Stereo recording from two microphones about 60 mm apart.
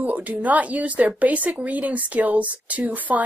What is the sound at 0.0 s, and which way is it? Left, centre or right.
A woman's voice, right.